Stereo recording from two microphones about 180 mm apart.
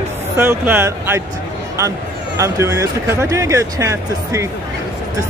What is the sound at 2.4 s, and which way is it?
Speech, 15° right (ahead or behind).